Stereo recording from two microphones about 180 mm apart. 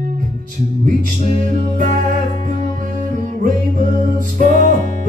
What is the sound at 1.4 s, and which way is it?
Music, 45° right (ahead or behind).